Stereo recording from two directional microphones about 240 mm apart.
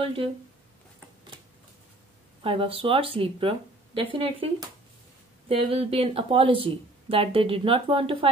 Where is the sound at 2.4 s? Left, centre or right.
Right.